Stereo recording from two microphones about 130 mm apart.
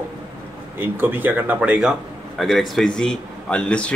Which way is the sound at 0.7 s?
15° right (ahead or behind).